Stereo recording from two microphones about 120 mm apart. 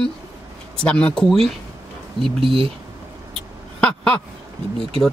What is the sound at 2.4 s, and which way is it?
Speech, 50° right (ahead or behind).